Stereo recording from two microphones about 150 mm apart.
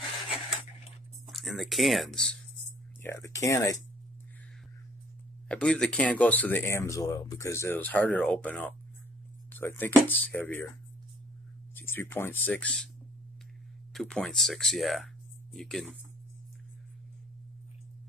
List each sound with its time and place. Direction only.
1.2 s speech: centre (ahead or behind)
3.0 s speech: 20° left (ahead or behind)
5.5 s speech: 5° left (ahead or behind)
11.7 s speech: 15° left (ahead or behind)
13.9 s speech: 5° left (ahead or behind)